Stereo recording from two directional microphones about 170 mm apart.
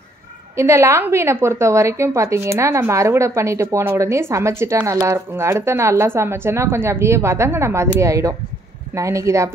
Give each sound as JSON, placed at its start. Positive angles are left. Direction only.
{"t": 0.6, "sound": "a woman's voice", "side_deg": -15}